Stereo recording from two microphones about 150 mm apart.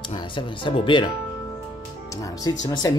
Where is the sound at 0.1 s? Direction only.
30° left (ahead or behind).